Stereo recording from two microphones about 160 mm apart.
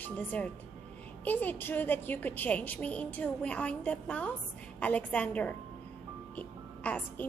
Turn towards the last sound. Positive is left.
turn(degrees=10)  # may be behind; listen again after turning